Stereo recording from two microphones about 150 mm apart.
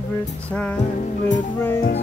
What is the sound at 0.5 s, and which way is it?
Music, 5° left (ahead or behind).